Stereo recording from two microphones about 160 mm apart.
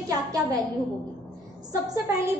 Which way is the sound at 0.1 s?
20° right (ahead or behind).